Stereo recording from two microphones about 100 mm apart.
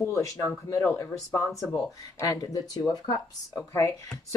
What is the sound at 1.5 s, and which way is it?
Speech, centre (ahead or behind).